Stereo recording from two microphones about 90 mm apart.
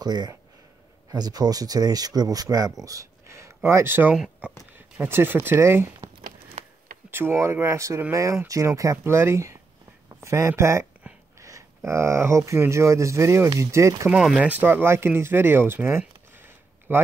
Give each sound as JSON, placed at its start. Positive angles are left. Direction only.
{"t": 0.0, "sound": "speech", "side_deg": -50}
{"t": 7.1, "sound": "speech", "side_deg": -25}
{"t": 14.1, "sound": "speech", "side_deg": -10}
{"t": 16.3, "sound": "a sound", "side_deg": -25}